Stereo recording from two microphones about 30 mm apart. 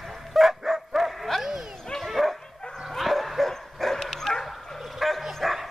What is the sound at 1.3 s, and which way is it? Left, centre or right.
Dog, centre.